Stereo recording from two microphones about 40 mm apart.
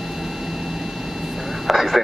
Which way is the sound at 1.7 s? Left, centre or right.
Centre.